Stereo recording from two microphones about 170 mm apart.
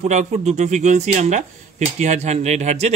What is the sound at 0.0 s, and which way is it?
Speech, 45° right (ahead or behind).